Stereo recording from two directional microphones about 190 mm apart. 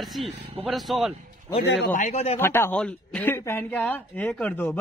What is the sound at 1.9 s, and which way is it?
Speech, 40° left (ahead or behind).